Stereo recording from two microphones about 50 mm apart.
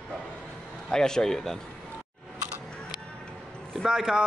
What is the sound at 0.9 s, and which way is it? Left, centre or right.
Speech, centre.